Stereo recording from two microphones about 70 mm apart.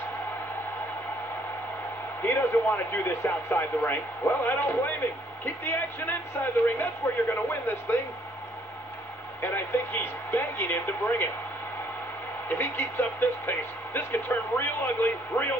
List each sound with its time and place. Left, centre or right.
2.2 s a man's voice: left
9.4 s a man's voice: left
12.4 s speech: left